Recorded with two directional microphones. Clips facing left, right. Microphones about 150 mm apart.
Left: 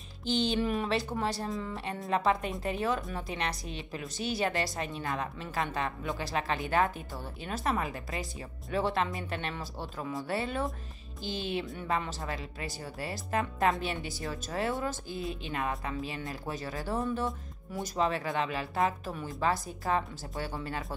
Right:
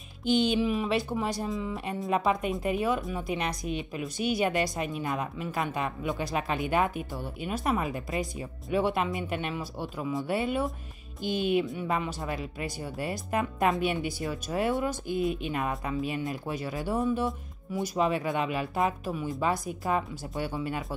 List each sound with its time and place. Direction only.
0.3 s a woman's voice: 10° right (ahead or behind)
1.5 s speech: centre (ahead or behind)
2.0 s a woman's voice: 10° right (ahead or behind)